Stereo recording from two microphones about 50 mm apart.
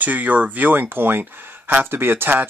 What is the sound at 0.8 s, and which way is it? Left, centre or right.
Speech, right.